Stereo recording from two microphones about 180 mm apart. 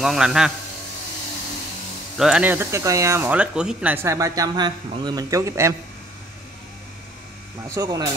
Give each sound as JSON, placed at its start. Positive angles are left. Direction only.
{"t": 0.0, "sound": "a man's voice", "side_deg": 0}
{"t": 2.1, "sound": "speech", "side_deg": -5}
{"t": 7.6, "sound": "speech", "side_deg": -20}